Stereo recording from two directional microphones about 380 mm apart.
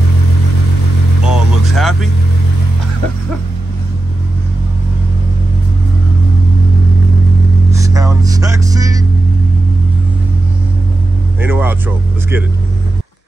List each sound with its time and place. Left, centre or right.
1.2 s vehicle: centre
7.7 s a sound: centre
11.4 s music: centre